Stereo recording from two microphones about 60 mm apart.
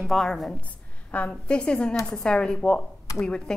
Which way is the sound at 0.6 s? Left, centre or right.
Left.